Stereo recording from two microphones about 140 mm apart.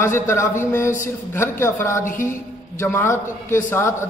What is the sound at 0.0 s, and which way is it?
A woman's voice, 20° left (ahead or behind).